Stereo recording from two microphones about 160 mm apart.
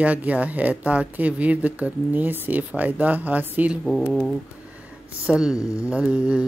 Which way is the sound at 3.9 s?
5° left (ahead or behind).